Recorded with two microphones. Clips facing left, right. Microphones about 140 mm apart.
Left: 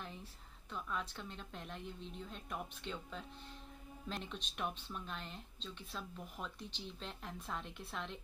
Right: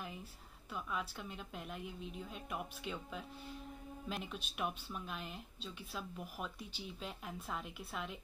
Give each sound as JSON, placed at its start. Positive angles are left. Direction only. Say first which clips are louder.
{"t": 0.0, "sound": "speech", "louder": "right 2 dB", "side_deg": -5}